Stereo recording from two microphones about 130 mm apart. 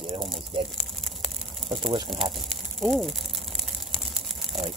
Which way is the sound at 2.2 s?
Centre (ahead or behind).